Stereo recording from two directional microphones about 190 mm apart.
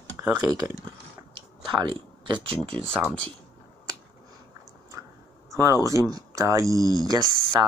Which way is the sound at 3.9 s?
15° right (ahead or behind).